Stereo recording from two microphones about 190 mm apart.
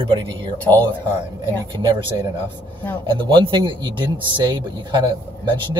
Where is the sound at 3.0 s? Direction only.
25° right (ahead or behind).